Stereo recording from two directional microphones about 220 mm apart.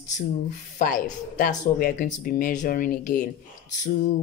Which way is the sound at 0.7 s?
35° left (ahead or behind).